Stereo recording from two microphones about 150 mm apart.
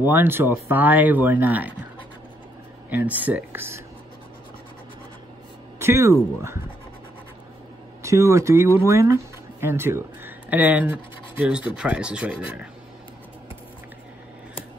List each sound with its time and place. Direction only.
0.1 s speech: 15° right (ahead or behind)
2.9 s speech: 10° right (ahead or behind)
5.8 s speech: 20° right (ahead or behind)
8.0 s speech: 20° right (ahead or behind)